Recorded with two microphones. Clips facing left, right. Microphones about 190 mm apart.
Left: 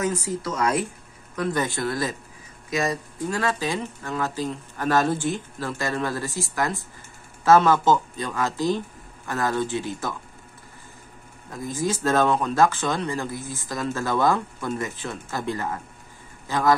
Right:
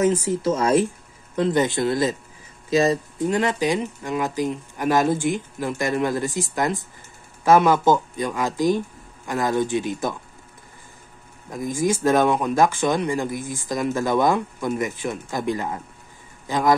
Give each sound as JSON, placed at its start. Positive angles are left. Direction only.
{"t": 0.0, "sound": "a man's voice", "side_deg": -20}
{"t": 11.5, "sound": "a man's voice", "side_deg": -15}